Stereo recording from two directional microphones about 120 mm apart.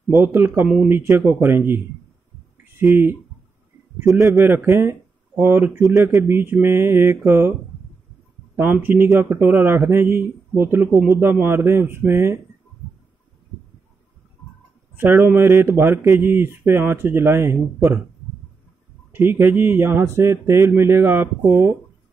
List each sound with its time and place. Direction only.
0.1 s speech: 20° right (ahead or behind)
2.5 s a sound: 20° right (ahead or behind)
4.0 s speech: 25° right (ahead or behind)
8.5 s speech: 15° right (ahead or behind)
15.0 s speech: 15° right (ahead or behind)
19.1 s speech: 20° right (ahead or behind)